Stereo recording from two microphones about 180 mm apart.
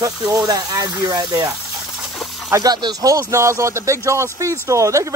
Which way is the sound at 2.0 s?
Centre (ahead or behind).